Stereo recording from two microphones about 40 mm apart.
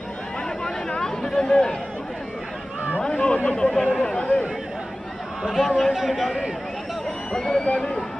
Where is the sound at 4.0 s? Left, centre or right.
Left.